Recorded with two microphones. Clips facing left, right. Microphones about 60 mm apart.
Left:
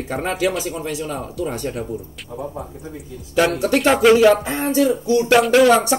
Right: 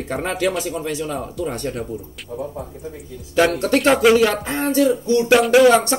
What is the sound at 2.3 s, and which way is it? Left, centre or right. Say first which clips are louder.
Speech: right 2 dB; left.